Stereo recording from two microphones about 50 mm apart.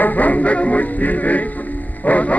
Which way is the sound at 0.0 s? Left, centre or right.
Left.